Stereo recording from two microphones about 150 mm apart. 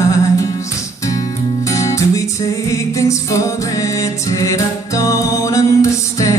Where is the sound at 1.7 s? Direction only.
20° left (ahead or behind).